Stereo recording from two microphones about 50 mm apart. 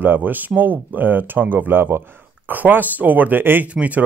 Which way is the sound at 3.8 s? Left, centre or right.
Right.